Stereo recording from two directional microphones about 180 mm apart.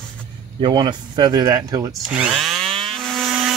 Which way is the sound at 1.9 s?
5° right (ahead or behind).